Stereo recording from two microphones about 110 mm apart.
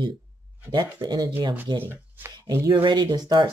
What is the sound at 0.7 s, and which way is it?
Speech, 40° right (ahead or behind).